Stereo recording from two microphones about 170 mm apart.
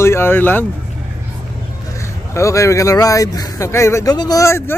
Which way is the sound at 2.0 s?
15° left (ahead or behind).